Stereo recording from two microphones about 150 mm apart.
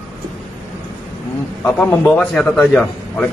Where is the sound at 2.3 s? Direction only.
5° left (ahead or behind).